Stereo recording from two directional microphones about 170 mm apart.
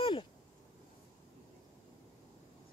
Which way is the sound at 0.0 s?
30° left (ahead or behind).